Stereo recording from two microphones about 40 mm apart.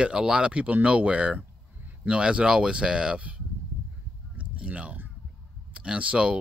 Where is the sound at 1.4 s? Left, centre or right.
Right.